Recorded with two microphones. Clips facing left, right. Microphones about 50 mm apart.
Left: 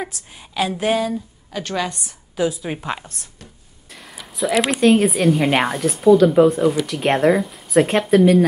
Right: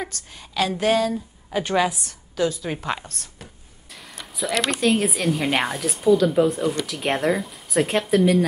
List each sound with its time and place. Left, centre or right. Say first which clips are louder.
0.0 s speech: left 2 dB; centre
1.5 s a woman's voice: right 3 dB; centre
1.9 s speech: right 1 dB; centre